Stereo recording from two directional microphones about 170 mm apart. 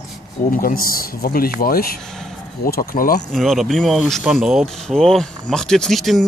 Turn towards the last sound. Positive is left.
turn(degrees=0)  # may be behind; listen again after turning